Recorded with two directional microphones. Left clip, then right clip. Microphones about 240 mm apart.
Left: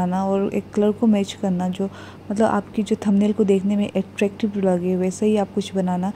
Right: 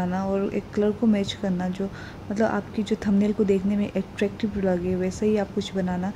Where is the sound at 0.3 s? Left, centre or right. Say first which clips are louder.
Left 4 dB; centre.